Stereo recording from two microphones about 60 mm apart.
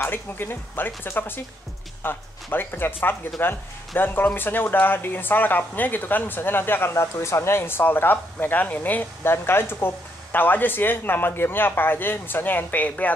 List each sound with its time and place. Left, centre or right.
0.0 s speech: left
7.0 s speech: left
9.2 s speech: left